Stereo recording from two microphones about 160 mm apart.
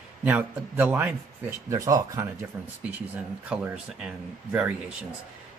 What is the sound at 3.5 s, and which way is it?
Speech, 10° right (ahead or behind).